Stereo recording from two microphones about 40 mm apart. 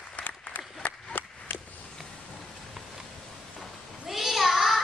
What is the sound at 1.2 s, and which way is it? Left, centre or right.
Chop, left.